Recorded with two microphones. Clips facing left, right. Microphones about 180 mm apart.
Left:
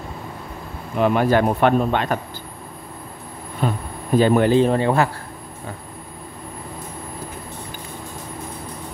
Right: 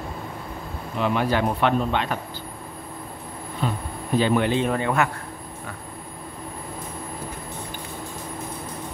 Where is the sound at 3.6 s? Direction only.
50° left (ahead or behind).